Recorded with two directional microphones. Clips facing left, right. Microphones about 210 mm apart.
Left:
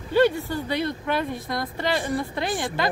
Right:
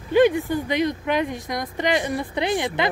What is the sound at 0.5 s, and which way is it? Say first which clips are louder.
Speech: right 4 dB; 15° right (ahead or behind).